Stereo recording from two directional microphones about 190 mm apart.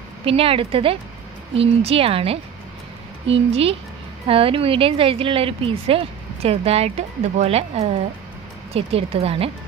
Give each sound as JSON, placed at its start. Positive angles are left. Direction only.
{"t": 0.2, "sound": "speech", "side_deg": -30}